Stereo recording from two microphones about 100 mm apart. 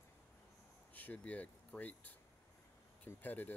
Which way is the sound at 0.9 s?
15° left (ahead or behind).